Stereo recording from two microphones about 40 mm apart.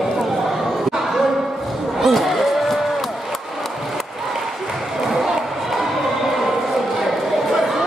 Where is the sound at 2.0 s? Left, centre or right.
Centre.